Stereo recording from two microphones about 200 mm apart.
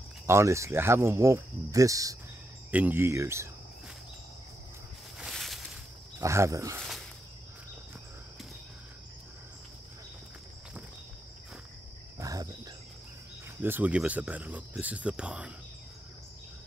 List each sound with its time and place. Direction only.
0.3 s speech: 15° right (ahead or behind)
5.2 s a sound: centre (ahead or behind)
6.1 s speech: 15° right (ahead or behind)
12.2 s cricket: 15° right (ahead or behind)
13.6 s speech: 10° right (ahead or behind)